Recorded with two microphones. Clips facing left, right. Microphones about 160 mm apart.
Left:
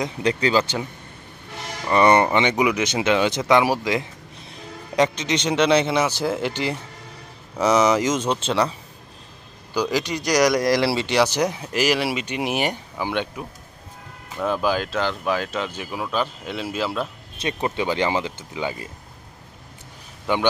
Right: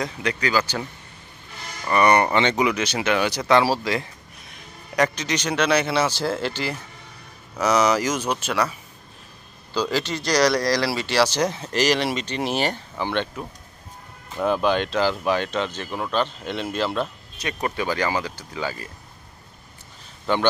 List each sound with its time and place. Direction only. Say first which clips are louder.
0.2 s speech: left 4 dB; 30° left (ahead or behind)
1.9 s speech: left 2 dB; 25° left (ahead or behind)
9.8 s speech: left 1 dB; 15° left (ahead or behind)
17.4 s speech: left 2 dB; 25° left (ahead or behind)
20.3 s speech: even; 15° left (ahead or behind)